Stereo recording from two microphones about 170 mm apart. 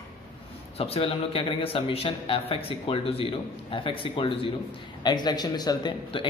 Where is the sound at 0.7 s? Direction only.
35° left (ahead or behind).